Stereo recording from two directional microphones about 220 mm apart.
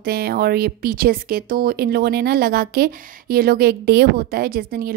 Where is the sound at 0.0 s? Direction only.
45° right (ahead or behind).